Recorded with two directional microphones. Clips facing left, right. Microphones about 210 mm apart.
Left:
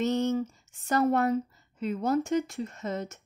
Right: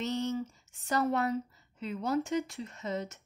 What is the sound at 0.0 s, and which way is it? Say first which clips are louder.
A woman's voice: left 6 dB; 50° left (ahead or behind).